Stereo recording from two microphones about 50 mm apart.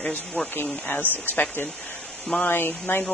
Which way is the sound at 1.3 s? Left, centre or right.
Left.